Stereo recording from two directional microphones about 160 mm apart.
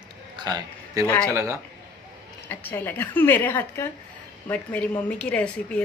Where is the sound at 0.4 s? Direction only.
25° right (ahead or behind).